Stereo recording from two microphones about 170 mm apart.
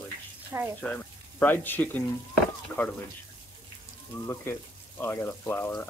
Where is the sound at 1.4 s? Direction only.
10° left (ahead or behind).